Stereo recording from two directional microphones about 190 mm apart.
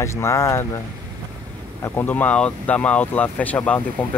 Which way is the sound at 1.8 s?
10° left (ahead or behind).